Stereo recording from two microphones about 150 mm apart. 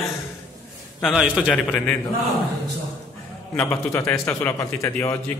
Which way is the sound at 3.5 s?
20° left (ahead or behind).